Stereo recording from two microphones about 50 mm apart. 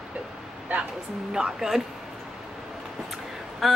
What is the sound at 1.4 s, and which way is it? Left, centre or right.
Speech, centre.